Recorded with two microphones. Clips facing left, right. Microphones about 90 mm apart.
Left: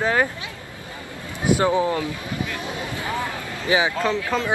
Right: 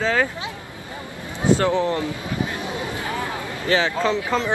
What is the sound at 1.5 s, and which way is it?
Speech, 15° left (ahead or behind).